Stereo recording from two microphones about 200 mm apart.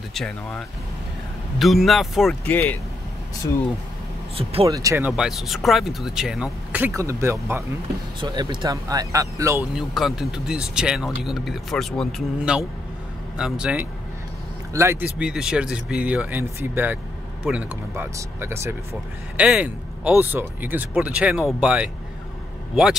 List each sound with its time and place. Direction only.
0.1 s speech: centre (ahead or behind)
4.4 s speech: 30° right (ahead or behind)
4.6 s speech: 15° right (ahead or behind)
9.8 s speech: centre (ahead or behind)